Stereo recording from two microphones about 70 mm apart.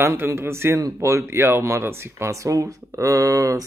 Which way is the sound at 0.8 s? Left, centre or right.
Right.